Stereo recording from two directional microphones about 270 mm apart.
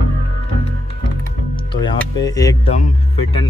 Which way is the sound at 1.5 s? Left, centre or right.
Centre.